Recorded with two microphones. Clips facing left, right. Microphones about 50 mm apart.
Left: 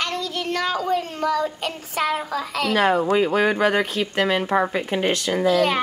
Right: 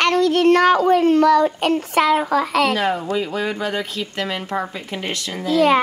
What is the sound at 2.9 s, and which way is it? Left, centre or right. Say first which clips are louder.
Speech: left 3 dB; left.